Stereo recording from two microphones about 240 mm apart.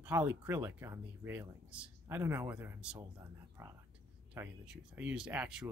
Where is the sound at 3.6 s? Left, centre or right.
Centre.